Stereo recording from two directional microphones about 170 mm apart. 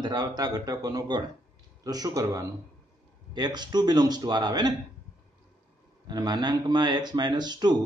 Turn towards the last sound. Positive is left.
turn(degrees=-25)  # may be behind; listen again after turning